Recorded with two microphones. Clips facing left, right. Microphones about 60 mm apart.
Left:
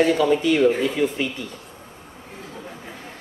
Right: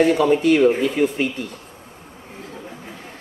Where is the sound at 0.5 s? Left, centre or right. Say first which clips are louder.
Right 2 dB; right.